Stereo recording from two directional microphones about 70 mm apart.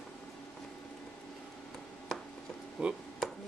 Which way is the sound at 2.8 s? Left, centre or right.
Centre.